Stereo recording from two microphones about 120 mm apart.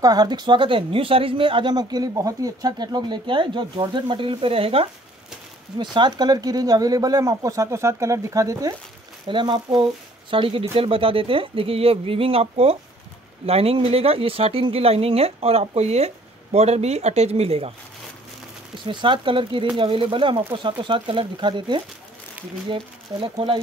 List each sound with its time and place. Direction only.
0.0 s speech: 35° right (ahead or behind); by 4.8 s 50° right (ahead or behind)
5.8 s speech: 40° right (ahead or behind)
9.3 s speech: 40° right (ahead or behind); by 17.7 s 55° right (ahead or behind)
18.9 s speech: 45° right (ahead or behind)
23.3 s speech: 50° right (ahead or behind)